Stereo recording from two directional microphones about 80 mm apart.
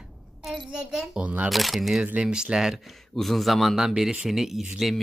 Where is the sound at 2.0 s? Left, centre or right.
Centre.